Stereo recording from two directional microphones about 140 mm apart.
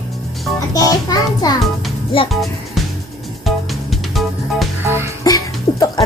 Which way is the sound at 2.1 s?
40° left (ahead or behind).